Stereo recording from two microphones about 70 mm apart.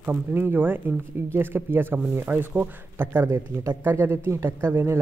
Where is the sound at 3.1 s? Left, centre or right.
Right.